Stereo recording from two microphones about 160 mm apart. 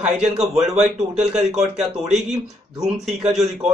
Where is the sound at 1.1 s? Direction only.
45° right (ahead or behind).